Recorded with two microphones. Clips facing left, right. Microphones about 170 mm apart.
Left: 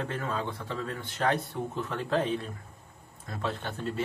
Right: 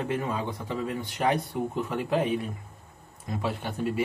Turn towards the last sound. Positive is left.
turn(degrees=-10)  # may be behind; listen again after turning